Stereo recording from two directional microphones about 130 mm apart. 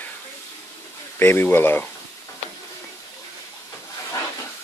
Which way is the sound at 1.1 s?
15° left (ahead or behind).